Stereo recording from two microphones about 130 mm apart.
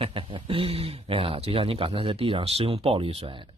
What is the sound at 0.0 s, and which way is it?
Speech, 45° right (ahead or behind).